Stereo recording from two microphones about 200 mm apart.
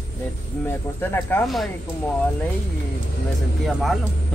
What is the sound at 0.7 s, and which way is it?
Speech, 10° left (ahead or behind).